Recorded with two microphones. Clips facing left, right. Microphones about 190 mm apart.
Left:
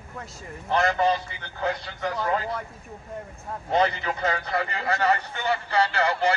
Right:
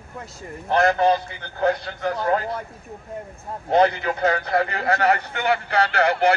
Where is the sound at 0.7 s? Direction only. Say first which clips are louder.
Right 4 dB; 45° right (ahead or behind).